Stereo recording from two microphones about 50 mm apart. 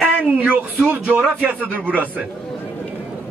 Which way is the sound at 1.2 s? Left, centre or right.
Right.